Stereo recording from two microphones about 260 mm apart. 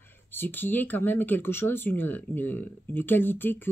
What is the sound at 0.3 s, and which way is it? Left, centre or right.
Speech, centre.